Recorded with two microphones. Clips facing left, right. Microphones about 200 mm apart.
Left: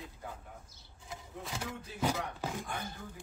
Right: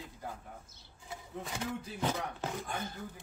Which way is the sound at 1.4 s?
Centre (ahead or behind).